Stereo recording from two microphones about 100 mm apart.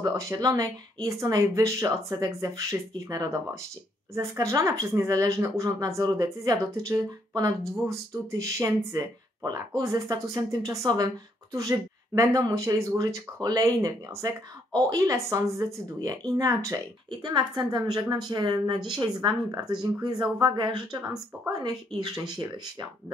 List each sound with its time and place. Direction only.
0.1 s a woman's voice: 30° right (ahead or behind)